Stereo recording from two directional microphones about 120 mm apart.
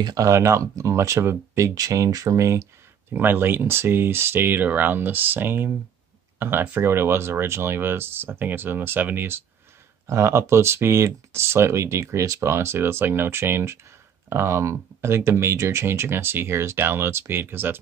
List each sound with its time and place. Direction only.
0.0 s speech: 30° right (ahead or behind)